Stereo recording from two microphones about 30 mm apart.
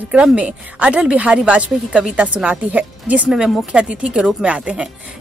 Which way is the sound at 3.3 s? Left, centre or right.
Right.